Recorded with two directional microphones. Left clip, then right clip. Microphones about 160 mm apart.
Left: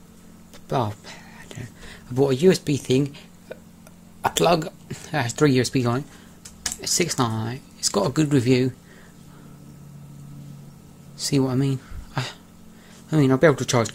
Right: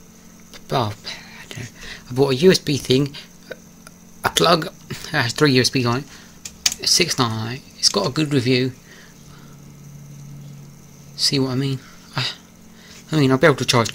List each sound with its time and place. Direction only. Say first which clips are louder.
0.7 s speech: right 3 dB; 5° left (ahead or behind)
11.1 s speech: right 3 dB; 15° left (ahead or behind)